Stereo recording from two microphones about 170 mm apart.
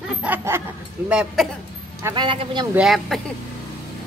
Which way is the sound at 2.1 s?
30° right (ahead or behind).